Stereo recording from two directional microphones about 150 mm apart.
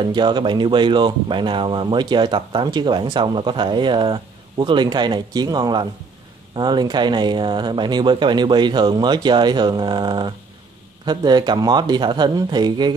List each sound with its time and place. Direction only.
0.0 s speech: 30° right (ahead or behind)